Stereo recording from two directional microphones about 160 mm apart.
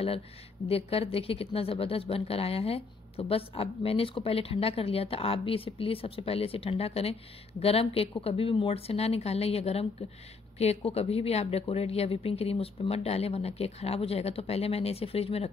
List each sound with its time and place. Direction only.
0.7 s a woman's voice: 35° left (ahead or behind)